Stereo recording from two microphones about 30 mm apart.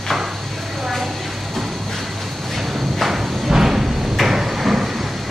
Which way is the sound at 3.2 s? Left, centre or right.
Centre.